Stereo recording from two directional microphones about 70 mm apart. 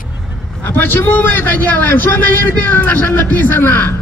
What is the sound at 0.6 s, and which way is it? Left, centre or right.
A man's voice, left.